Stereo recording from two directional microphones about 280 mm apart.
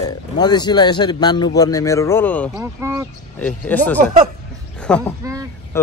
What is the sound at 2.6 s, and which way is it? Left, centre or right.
Speech, centre.